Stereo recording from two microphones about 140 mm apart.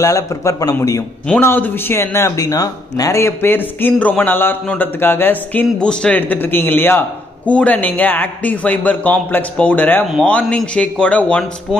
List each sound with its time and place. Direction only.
0.0 s a man's voice: 20° left (ahead or behind)